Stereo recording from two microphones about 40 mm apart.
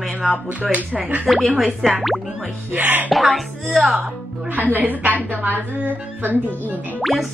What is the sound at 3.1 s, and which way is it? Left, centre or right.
Speech, centre.